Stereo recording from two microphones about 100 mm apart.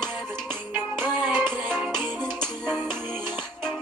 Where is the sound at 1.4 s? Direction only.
5° left (ahead or behind).